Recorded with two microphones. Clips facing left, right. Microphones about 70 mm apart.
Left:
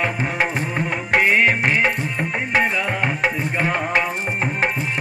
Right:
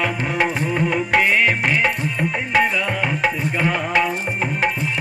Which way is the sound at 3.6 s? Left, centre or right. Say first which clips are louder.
Right 1 dB; left.